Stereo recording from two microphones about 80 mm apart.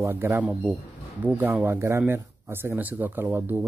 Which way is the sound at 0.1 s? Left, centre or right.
Right.